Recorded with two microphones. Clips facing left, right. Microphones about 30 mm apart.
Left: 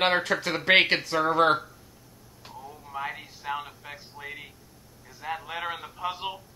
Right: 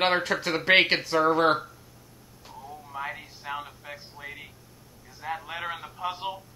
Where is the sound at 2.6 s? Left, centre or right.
Centre.